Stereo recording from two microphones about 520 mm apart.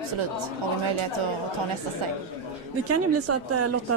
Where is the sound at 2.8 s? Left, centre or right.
Right.